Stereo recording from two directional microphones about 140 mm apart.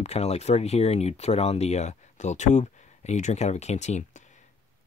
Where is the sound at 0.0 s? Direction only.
50° left (ahead or behind).